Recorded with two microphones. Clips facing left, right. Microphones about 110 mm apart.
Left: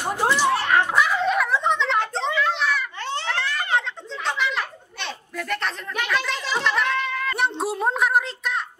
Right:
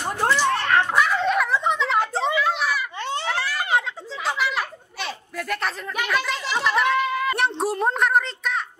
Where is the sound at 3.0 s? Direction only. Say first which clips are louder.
Right 1 dB; 15° right (ahead or behind).